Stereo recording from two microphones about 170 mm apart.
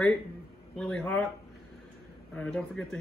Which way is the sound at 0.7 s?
5° left (ahead or behind).